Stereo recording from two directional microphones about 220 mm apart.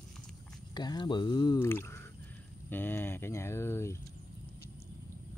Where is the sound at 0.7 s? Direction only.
20° left (ahead or behind).